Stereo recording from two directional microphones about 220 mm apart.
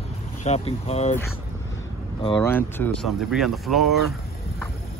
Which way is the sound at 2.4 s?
10° left (ahead or behind).